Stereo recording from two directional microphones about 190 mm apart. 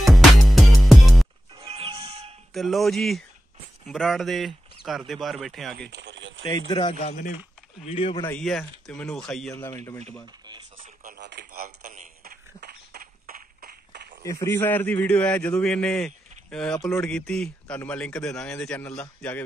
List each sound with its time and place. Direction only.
0.0 s music: centre (ahead or behind)
1.6 s music: 30° right (ahead or behind)
2.5 s speech: centre (ahead or behind)
5.9 s a sound: 65° right (ahead or behind)
6.4 s speech: 25° left (ahead or behind); by 7.3 s 40° left (ahead or behind)
7.8 s speech: 30° left (ahead or behind)
8.2 s speech: 5° left (ahead or behind)
9.6 s a man's voice: 15° left (ahead or behind)
10.8 s radio: 55° right (ahead or behind)
14.2 s a man's voice: 15° left (ahead or behind)